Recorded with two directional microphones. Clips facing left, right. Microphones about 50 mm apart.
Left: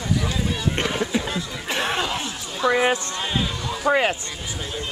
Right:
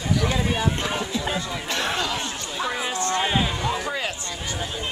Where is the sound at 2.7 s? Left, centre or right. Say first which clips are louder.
Left 13 dB; left.